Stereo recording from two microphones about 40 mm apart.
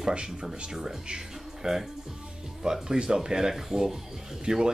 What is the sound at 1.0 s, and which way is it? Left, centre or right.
Music, centre.